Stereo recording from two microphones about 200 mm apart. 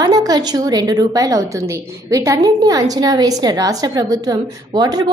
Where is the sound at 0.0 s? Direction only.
20° right (ahead or behind).